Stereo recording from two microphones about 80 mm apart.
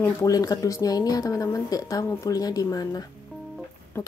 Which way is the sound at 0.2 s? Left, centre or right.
Left.